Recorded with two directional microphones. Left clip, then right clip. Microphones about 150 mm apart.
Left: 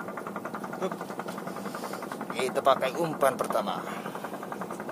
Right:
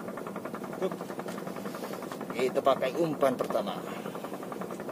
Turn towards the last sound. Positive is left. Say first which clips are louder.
# left 2 dB
turn(degrees=-50)  # may be behind; listen again after turning